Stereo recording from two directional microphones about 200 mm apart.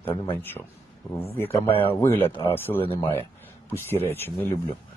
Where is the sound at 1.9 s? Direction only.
10° left (ahead or behind).